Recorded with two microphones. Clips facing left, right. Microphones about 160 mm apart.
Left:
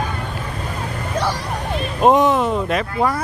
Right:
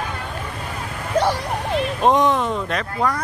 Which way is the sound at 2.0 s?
5° left (ahead or behind).